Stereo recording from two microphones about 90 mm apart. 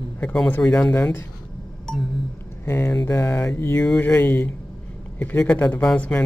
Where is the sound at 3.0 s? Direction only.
30° left (ahead or behind).